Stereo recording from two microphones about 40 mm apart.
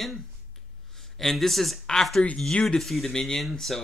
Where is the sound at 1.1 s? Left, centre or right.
Centre.